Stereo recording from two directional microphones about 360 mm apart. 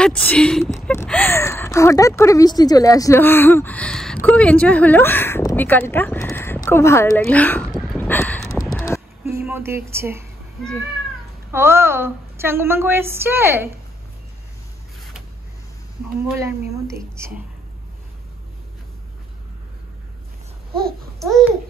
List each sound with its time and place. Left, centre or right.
0.0 s speech: centre
9.2 s a sound: centre
11.5 s a woman's voice: centre
16.3 s a woman's voice: centre
21.2 s babbling: centre